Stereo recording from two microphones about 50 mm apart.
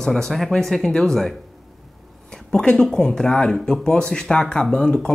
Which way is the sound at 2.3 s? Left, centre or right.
Centre.